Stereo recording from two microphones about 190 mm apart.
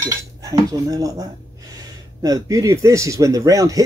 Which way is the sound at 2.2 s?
15° right (ahead or behind).